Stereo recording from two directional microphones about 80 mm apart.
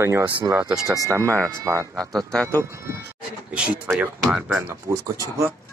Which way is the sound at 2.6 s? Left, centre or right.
Right.